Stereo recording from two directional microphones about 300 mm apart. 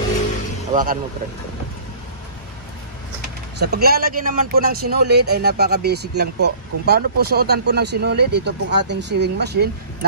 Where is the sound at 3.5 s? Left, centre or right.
Right.